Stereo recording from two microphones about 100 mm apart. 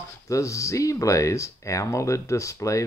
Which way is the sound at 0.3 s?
30° left (ahead or behind).